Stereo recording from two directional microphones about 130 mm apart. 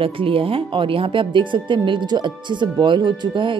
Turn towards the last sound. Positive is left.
turn(degrees=-35)  # may be behind; listen again after turning